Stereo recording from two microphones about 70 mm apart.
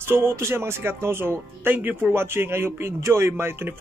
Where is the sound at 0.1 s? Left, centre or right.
Right.